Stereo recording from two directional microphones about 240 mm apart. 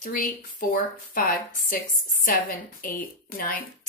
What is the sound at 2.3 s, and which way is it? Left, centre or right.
A woman's voice, left.